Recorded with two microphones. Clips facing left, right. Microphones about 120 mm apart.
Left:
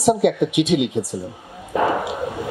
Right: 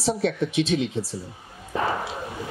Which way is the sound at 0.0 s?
15° left (ahead or behind).